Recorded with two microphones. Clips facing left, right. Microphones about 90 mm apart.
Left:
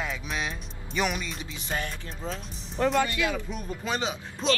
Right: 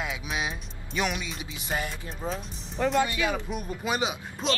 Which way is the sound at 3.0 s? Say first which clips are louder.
Even; 15° right (ahead or behind).